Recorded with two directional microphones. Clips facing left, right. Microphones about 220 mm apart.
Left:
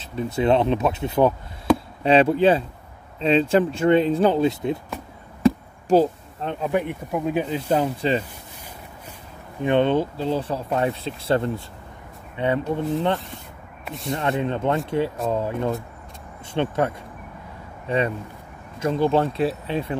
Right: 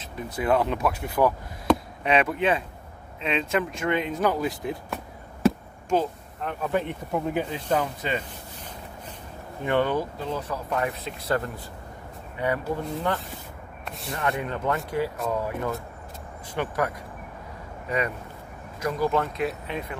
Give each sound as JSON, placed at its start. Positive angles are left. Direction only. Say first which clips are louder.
{"t": 0.0, "sound": "speech", "louder": "left 7 dB", "side_deg": 25}
{"t": 4.8, "sound": "chop", "louder": "even", "side_deg": 0}
{"t": 5.9, "sound": "speech", "louder": "left 7 dB", "side_deg": 30}
{"t": 6.6, "sound": "speech", "louder": "left 3 dB", "side_deg": 15}
{"t": 7.2, "sound": "speech", "louder": "left 5 dB", "side_deg": 20}
{"t": 9.6, "sound": "speech", "louder": "left 5 dB", "side_deg": 20}
{"t": 13.8, "sound": "speech", "louder": "left 7 dB", "side_deg": 0}
{"t": 14.1, "sound": "speech", "louder": "left 5 dB", "side_deg": 25}